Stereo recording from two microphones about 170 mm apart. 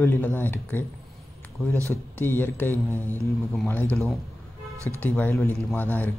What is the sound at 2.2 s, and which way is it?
Speech, 10° left (ahead or behind).